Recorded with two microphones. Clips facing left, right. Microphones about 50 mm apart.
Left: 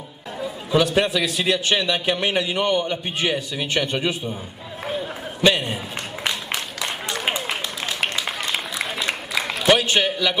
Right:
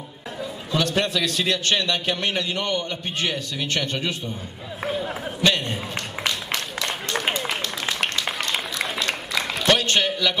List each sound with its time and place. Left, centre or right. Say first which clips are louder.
0.4 s a man's voice: left 5 dB; centre
5.4 s a man's voice: left 3 dB; centre
6.2 s a sound: left 1 dB; centre